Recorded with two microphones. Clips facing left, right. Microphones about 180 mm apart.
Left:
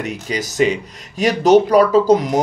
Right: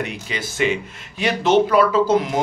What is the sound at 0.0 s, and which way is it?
Speech, 40° left (ahead or behind).